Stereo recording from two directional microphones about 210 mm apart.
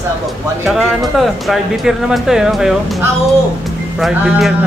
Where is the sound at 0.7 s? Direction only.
Centre (ahead or behind).